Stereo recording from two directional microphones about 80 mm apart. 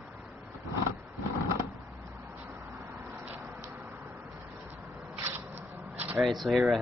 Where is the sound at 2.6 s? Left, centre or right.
Right.